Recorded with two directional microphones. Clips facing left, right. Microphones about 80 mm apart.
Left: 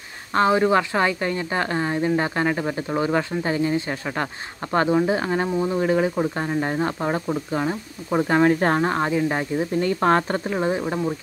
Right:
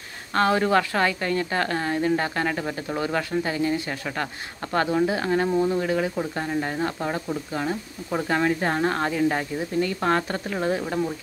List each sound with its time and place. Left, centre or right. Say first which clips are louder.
0.3 s a woman's voice: left 2 dB; left
8.5 s speech: left 5 dB; left
8.8 s a woman's voice: left 1 dB; centre
9.8 s speech: left 3 dB; left
10.5 s a woman's voice: left 1 dB; centre